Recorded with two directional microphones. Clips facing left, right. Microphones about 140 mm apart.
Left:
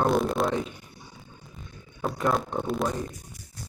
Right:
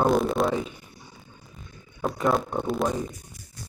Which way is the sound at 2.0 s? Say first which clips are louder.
Right 2 dB; centre (ahead or behind).